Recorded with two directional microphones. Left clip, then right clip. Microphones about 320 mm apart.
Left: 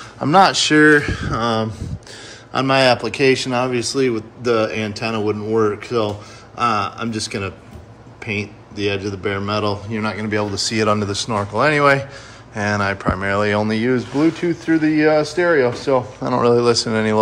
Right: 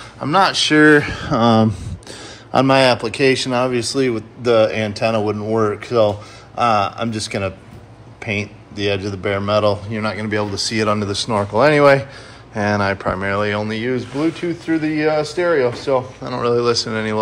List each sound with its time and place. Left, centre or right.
0.2 s a man's voice: centre
0.8 s a man's voice: centre
2.5 s a man's voice: centre